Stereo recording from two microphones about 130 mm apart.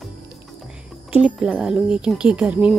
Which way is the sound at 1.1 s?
5° right (ahead or behind).